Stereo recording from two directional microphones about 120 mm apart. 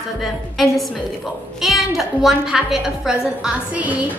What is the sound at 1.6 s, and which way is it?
A woman's voice, centre (ahead or behind).